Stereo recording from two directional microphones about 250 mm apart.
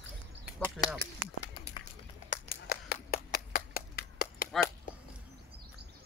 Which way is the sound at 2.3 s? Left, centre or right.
Left.